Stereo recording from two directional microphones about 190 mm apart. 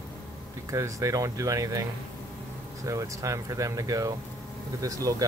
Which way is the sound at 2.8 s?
15° right (ahead or behind).